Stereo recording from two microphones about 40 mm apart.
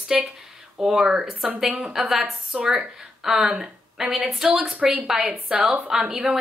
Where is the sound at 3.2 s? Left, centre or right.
Centre.